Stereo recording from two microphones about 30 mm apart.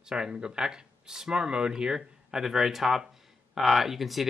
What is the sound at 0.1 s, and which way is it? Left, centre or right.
Speech, right.